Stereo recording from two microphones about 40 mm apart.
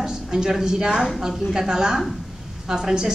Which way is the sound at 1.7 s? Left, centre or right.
Centre.